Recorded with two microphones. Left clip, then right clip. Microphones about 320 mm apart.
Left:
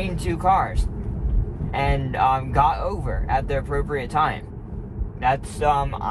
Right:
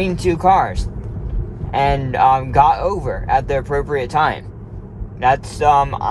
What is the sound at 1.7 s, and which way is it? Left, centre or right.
Speech, right.